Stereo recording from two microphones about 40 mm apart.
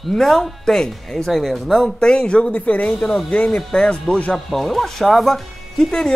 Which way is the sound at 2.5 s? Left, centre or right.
Left.